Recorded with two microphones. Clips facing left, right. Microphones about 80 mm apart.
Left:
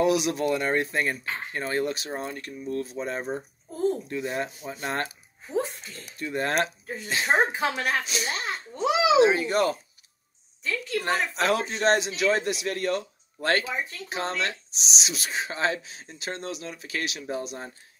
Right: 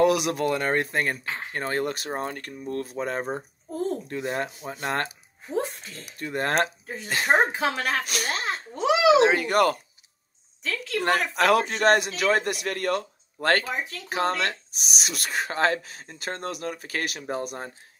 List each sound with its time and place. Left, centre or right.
0.0 s speech: right
5.5 s a sound: right
6.1 s speech: right
8.5 s a child's voice: right
10.6 s speech: right